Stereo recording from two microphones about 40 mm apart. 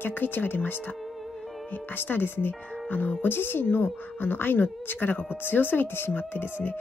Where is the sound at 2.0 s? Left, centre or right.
Left.